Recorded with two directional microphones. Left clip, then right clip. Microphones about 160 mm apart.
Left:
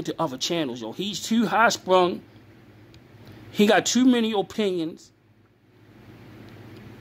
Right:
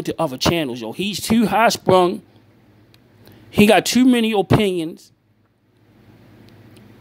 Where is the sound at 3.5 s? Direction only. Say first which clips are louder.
Right 6 dB; 40° right (ahead or behind).